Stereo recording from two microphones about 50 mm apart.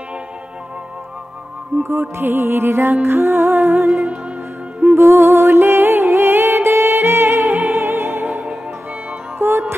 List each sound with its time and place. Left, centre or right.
1.8 s music: right
8.2 s music: right
9.4 s music: right